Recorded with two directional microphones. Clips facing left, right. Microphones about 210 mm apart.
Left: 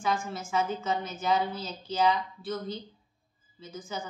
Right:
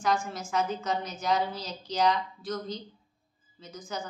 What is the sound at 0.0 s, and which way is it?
A woman's voice, 5° left (ahead or behind).